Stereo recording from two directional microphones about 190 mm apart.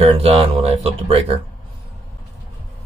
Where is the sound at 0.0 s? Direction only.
30° right (ahead or behind).